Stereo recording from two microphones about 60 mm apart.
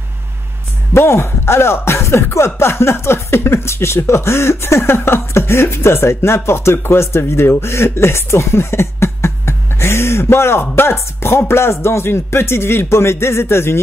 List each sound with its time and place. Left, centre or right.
0.9 s speech: left